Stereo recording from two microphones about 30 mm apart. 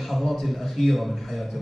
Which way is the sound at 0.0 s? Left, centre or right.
Centre.